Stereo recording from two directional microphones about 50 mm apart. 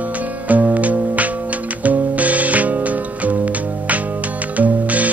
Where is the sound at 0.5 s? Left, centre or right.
Right.